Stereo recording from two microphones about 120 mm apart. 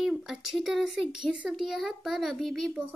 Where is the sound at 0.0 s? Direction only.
Centre (ahead or behind).